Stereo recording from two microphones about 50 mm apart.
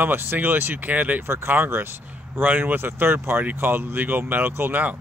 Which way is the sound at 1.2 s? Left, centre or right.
Right.